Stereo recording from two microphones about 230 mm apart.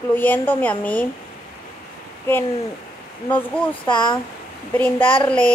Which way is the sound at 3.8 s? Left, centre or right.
Centre.